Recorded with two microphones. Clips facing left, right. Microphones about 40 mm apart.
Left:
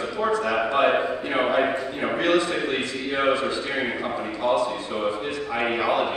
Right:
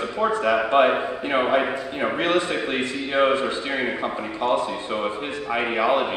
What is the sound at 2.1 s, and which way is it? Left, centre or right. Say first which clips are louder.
A man's voice: left 2 dB; right.